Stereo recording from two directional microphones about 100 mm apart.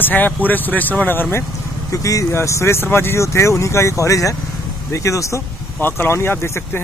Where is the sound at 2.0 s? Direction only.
30° left (ahead or behind).